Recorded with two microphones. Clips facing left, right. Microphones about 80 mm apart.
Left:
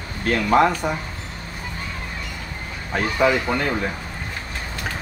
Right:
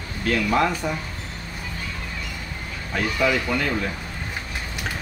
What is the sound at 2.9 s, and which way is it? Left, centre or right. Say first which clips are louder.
Speech: left 3 dB; left.